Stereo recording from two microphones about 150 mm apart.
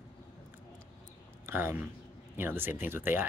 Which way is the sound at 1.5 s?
15° right (ahead or behind).